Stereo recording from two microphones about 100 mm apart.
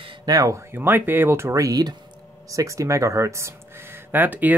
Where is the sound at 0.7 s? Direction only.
20° right (ahead or behind).